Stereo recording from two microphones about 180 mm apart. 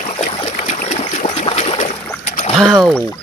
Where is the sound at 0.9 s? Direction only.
40° left (ahead or behind).